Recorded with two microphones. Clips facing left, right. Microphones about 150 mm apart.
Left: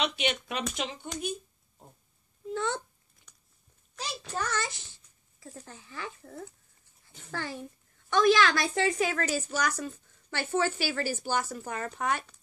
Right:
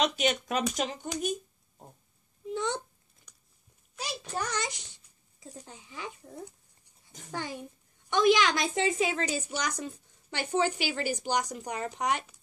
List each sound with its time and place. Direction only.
0.0 s speech: 40° right (ahead or behind)
2.5 s a woman's voice: 15° right (ahead or behind)
4.4 s a child's voice: 15° right (ahead or behind)